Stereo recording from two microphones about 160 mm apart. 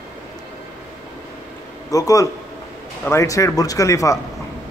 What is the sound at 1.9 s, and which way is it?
Speech, 20° left (ahead or behind).